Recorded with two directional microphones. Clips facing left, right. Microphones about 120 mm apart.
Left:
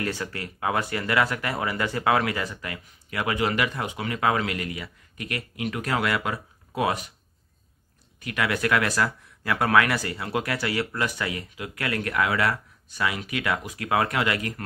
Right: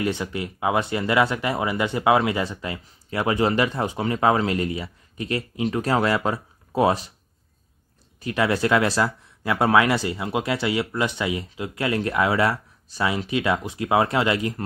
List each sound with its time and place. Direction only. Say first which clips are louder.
0.0 s speech: right 5 dB; 20° right (ahead or behind)
8.2 s speech: right 4 dB; 30° right (ahead or behind)